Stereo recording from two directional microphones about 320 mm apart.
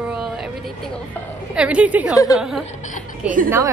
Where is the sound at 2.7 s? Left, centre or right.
Left.